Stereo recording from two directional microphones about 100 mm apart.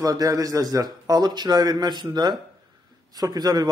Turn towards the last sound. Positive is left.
turn(degrees=-40)  # may be behind; listen again after turning